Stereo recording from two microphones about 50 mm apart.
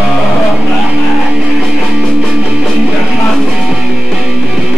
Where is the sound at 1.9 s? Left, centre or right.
Right.